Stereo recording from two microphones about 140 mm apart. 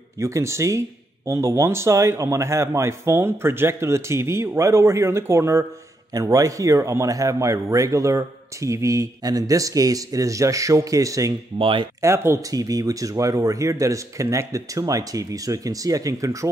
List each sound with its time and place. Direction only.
0.2 s speech: 20° right (ahead or behind)
11.5 s speech: 40° right (ahead or behind)
12.0 s speech: 20° right (ahead or behind)